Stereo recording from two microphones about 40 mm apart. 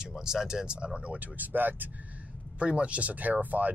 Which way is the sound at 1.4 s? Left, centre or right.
Right.